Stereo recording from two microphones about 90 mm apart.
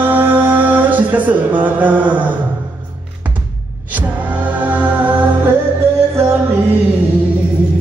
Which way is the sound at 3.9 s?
20° right (ahead or behind).